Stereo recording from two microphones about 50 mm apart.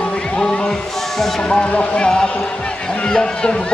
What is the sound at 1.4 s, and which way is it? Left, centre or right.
Speech, left.